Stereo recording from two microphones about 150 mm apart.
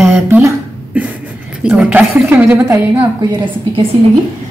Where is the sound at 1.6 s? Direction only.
5° right (ahead or behind).